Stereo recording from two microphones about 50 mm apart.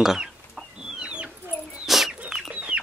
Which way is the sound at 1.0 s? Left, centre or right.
Right.